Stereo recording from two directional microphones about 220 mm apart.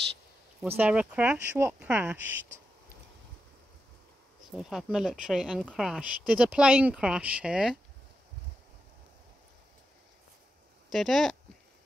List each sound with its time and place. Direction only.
0.6 s speech: 5° right (ahead or behind)
4.5 s speech: centre (ahead or behind)
10.9 s speech: centre (ahead or behind)